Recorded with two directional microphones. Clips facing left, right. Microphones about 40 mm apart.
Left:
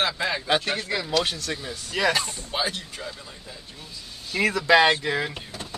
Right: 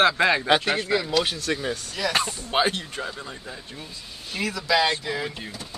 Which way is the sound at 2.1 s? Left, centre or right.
Right.